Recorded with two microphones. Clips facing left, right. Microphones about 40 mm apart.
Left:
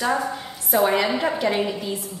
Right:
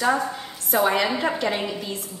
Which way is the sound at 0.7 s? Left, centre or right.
Centre.